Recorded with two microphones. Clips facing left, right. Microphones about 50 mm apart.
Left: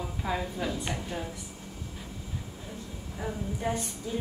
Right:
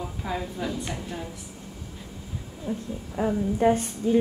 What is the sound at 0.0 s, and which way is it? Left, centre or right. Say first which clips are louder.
Speech: right 1 dB; centre.